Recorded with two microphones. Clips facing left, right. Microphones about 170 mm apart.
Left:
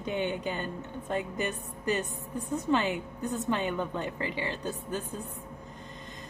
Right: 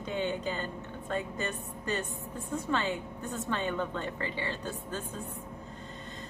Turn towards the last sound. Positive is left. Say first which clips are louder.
# left 3 dB
turn(degrees=15)  # may be behind; listen again after turning